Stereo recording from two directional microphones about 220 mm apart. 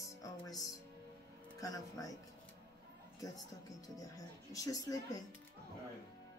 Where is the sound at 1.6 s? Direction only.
15° left (ahead or behind).